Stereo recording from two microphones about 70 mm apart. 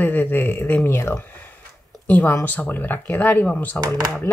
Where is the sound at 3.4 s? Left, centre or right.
Centre.